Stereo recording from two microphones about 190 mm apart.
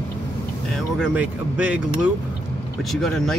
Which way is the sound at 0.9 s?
5° right (ahead or behind).